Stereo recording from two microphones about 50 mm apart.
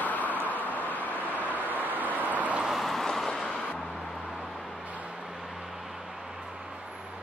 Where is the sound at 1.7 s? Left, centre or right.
Right.